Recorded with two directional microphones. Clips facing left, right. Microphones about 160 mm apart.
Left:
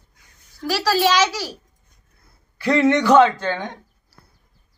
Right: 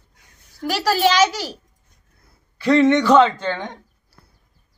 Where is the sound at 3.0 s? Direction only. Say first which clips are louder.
Even; 5° left (ahead or behind).